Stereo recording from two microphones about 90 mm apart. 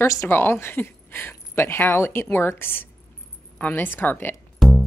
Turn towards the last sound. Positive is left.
turn(degrees=0)  # may be behind; listen again after turning